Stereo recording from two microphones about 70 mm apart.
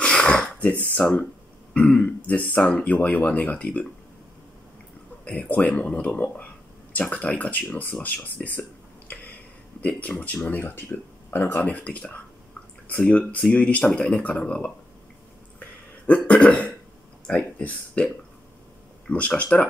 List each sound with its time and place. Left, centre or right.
0.0 s wheeze: centre
0.9 s speech: centre
5.2 s speech: left
16.1 s speech: centre